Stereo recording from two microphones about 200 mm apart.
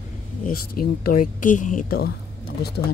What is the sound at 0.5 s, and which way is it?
Speech, 45° left (ahead or behind).